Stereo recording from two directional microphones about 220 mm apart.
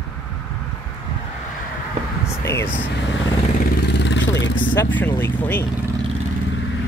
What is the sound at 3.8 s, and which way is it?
Vehicle, 50° left (ahead or behind).